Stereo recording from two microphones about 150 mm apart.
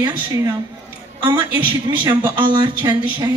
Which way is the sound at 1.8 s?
30° right (ahead or behind).